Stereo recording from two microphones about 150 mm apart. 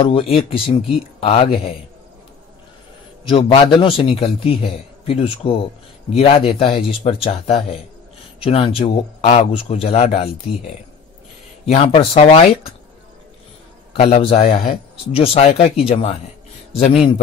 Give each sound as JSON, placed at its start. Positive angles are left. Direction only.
{"t": 0.0, "sound": "a man's voice", "side_deg": 40}
{"t": 3.3, "sound": "a man's voice", "side_deg": 40}
{"t": 11.7, "sound": "a man's voice", "side_deg": 40}
{"t": 13.9, "sound": "a man's voice", "side_deg": 45}
{"t": 14.5, "sound": "speech", "side_deg": 75}
{"t": 15.1, "sound": "a man's voice", "side_deg": 40}